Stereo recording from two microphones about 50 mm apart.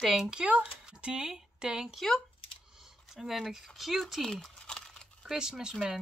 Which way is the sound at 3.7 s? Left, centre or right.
Centre.